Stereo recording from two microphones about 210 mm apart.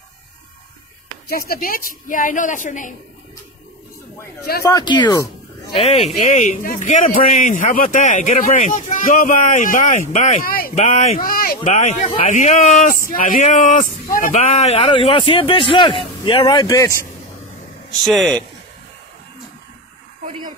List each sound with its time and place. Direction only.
1.3 s a man's voice: 45° left (ahead or behind)
4.6 s a man's voice: 20° left (ahead or behind); by 14.4 s 40° left (ahead or behind)
14.5 s speech: 30° left (ahead or behind)
18.0 s speech: 5° left (ahead or behind)